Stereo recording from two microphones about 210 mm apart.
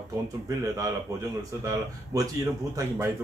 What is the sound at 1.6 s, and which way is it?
Speech, 15° right (ahead or behind).